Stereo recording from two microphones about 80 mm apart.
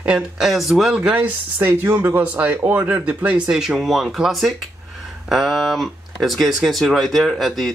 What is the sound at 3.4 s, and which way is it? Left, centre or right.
Speech, centre.